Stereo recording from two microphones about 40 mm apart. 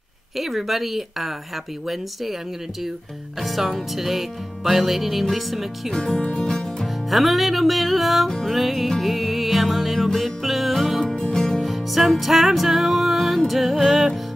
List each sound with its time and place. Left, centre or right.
0.4 s music: centre
3.3 s music: centre
5.9 s speech: centre
6.3 s music: centre
7.1 s music: centre
11.1 s music: centre
11.6 s music: centre